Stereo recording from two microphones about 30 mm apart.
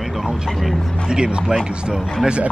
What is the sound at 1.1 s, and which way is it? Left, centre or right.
Speech, right.